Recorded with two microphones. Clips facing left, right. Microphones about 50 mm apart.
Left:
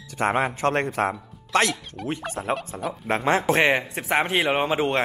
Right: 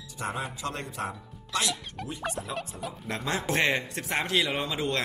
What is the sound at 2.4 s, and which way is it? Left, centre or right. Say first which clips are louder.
Speech: left 9 dB; left.